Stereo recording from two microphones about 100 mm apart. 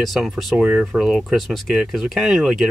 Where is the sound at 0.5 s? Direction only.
10° right (ahead or behind).